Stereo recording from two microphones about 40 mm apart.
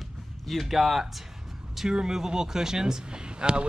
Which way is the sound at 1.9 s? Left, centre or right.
Centre.